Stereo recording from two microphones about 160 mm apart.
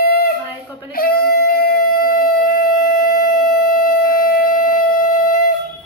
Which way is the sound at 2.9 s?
60° left (ahead or behind).